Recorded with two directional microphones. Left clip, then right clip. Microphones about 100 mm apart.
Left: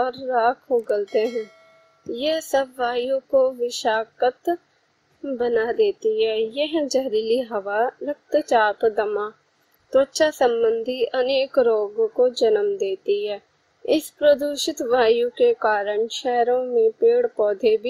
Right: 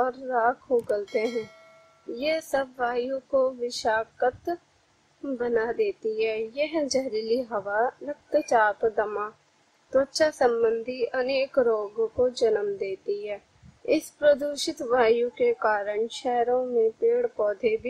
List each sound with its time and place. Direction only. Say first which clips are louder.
0.0 s speech: left 4 dB; 5° left (ahead or behind)
2.1 s a woman's voice: left 5 dB; 10° left (ahead or behind)
3.6 s a woman's voice: left 4 dB; 15° left (ahead or behind)
5.4 s a woman's voice: left 5 dB; 10° left (ahead or behind)
6.3 s speech: left 5 dB; 40° right (ahead or behind)
6.7 s a woman's voice: left 4 dB; 15° left (ahead or behind)
7.1 s a woman's voice: left 6 dB; 40° right (ahead or behind)
7.3 s a woman's voice: left 4 dB; 15° left (ahead or behind)
11.2 s a woman's voice: left 5 dB; 40° right (ahead or behind)
11.5 s a woman's voice: left 5 dB; 5° left (ahead or behind)
12.8 s speech: left 7 dB; 45° right (ahead or behind)
13.8 s a woman's voice: left 4 dB; 10° left (ahead or behind)